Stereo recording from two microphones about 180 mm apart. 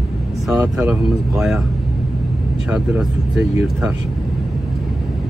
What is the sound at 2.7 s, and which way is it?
Speech, 5° right (ahead or behind).